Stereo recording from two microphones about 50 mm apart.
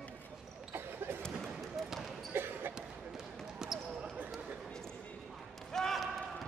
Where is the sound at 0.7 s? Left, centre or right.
Right.